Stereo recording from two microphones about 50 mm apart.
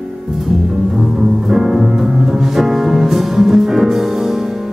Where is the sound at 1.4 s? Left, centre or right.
Centre.